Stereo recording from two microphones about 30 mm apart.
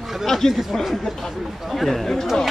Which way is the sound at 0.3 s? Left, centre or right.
Centre.